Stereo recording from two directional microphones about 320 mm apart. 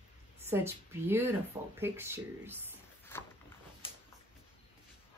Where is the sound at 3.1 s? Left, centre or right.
Centre.